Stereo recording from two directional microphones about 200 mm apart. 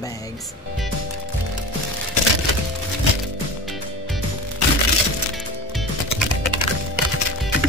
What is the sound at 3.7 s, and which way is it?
Music, centre (ahead or behind).